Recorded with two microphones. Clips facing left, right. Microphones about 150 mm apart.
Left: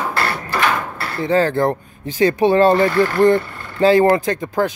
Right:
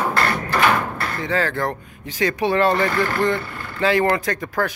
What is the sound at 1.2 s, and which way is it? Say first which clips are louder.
Speech: left 7 dB; 30° left (ahead or behind).